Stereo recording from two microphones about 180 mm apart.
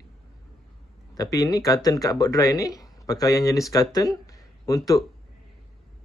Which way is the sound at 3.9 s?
20° left (ahead or behind).